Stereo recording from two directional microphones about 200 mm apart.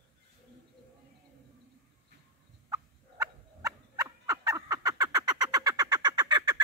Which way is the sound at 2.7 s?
20° right (ahead or behind).